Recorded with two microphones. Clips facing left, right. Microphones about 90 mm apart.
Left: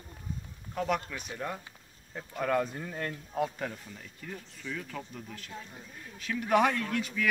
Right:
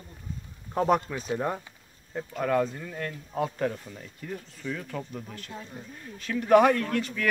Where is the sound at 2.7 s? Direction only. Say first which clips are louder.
Right 1 dB; 15° left (ahead or behind).